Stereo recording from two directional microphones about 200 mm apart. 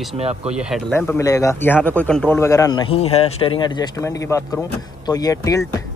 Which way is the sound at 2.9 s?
30° left (ahead or behind).